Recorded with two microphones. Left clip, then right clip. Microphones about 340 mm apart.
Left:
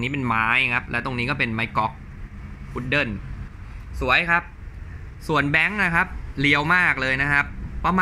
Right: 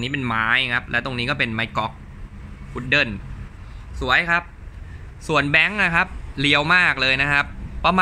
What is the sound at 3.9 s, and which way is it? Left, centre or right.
Speech, centre.